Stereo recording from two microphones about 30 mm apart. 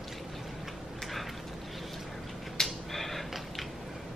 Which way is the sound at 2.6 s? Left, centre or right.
Centre.